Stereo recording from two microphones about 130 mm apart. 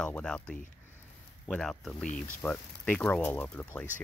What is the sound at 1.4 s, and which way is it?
Speech, 5° left (ahead or behind).